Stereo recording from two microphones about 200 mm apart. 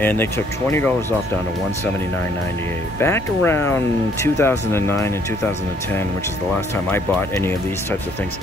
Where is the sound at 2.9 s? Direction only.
10° left (ahead or behind).